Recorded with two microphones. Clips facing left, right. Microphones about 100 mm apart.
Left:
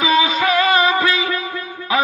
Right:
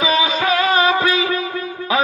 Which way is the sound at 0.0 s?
20° right (ahead or behind).